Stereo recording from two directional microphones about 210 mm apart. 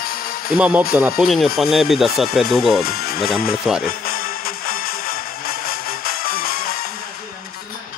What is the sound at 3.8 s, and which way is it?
Music, 45° left (ahead or behind).